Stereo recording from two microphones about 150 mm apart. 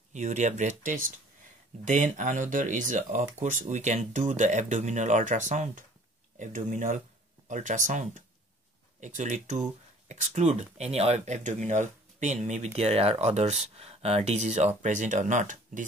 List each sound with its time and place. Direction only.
0.1 s speech: 55° right (ahead or behind)